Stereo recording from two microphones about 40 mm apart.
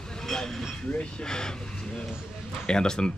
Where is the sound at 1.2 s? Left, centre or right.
Centre.